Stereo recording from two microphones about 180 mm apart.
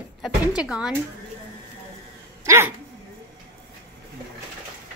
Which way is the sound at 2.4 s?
15° right (ahead or behind).